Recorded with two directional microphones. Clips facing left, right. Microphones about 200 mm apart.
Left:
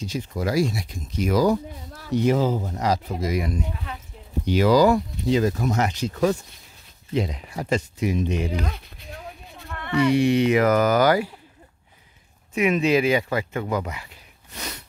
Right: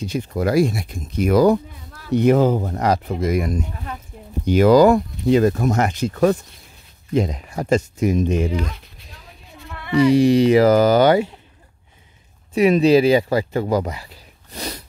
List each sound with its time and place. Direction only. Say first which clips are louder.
0.0 s speech: right 5 dB; 60° right (ahead or behind)
7.2 s speech: right 5 dB; 45° right (ahead or behind)
9.9 s speech: right 5 dB; 35° right (ahead or behind)
12.5 s speech: right 6 dB; 35° right (ahead or behind)